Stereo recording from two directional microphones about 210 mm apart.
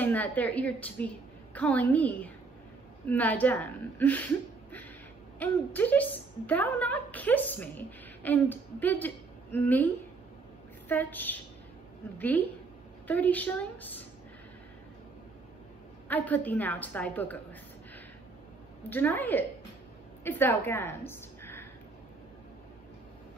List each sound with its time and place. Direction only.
0.0 s a woman's voice: 10° left (ahead or behind)
5.4 s a woman's voice: 10° left (ahead or behind)
10.9 s a woman's voice: 10° left (ahead or behind)
16.1 s a woman's voice: 10° left (ahead or behind)
18.9 s a woman's voice: 10° left (ahead or behind)